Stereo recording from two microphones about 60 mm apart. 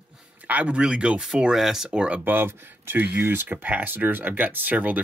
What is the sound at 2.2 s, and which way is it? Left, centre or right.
Speech, right.